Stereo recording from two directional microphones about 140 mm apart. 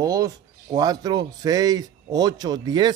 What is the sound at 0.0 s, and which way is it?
Speech, 25° right (ahead or behind).